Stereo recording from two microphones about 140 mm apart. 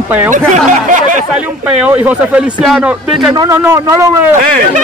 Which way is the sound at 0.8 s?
65° right (ahead or behind).